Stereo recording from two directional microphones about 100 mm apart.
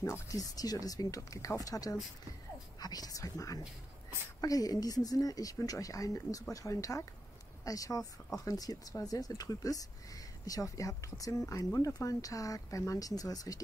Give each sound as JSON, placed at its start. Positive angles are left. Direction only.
{"t": 0.0, "sound": "speech", "side_deg": 35}